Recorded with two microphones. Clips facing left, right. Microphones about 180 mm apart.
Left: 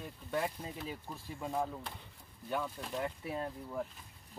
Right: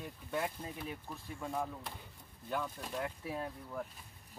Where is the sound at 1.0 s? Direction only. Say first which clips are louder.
Left 1 dB; 15° left (ahead or behind).